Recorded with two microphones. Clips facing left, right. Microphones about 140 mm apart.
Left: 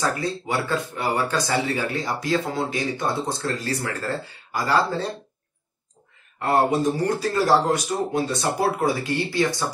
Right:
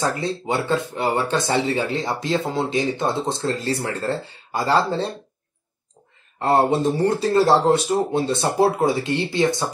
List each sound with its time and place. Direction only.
0.0 s speech: 25° right (ahead or behind)
6.4 s speech: 30° right (ahead or behind)